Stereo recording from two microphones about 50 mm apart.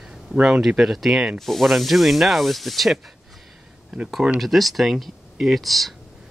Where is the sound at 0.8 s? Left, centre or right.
Centre.